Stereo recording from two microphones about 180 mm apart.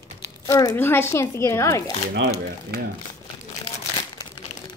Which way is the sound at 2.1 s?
65° right (ahead or behind).